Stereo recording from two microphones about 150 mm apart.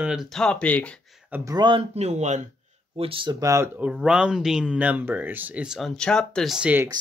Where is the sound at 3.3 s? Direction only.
20° right (ahead or behind).